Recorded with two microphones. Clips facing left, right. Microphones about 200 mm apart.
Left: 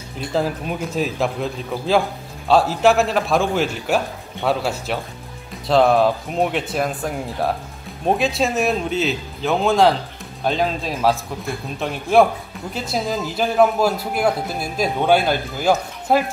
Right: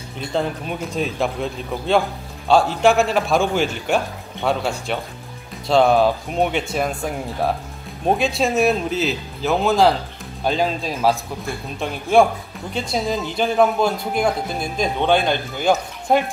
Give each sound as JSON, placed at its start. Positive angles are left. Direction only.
{"t": 0.3, "sound": "a man's voice", "side_deg": 5}